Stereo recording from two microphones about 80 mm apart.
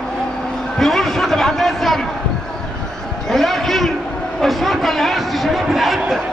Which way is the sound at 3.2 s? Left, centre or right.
Centre.